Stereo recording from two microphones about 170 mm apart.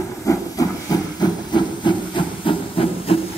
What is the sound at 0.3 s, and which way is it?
Steam, 20° left (ahead or behind).